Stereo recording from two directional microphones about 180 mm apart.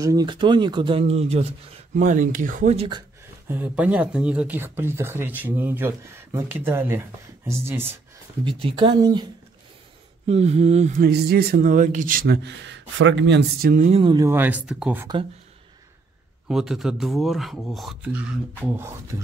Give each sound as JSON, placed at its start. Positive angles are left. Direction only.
{"t": 0.0, "sound": "speech", "side_deg": -20}
{"t": 2.0, "sound": "a man's voice", "side_deg": -45}
{"t": 3.4, "sound": "speech", "side_deg": -10}
{"t": 8.5, "sound": "speech", "side_deg": -30}
{"t": 10.2, "sound": "speech", "side_deg": -35}
{"t": 11.0, "sound": "a man's voice", "side_deg": -60}
{"t": 12.4, "sound": "speech", "side_deg": -85}
{"t": 13.6, "sound": "speech", "side_deg": -50}
{"t": 14.1, "sound": "speech", "side_deg": -15}
{"t": 16.4, "sound": "speech", "side_deg": -5}